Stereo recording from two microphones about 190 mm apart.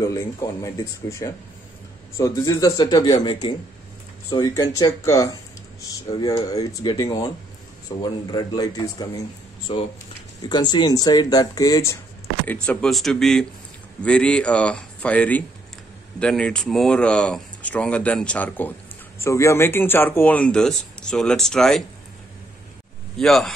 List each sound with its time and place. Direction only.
0.0 s speech: 15° left (ahead or behind)
12.6 s speech: centre (ahead or behind)
23.1 s speech: centre (ahead or behind)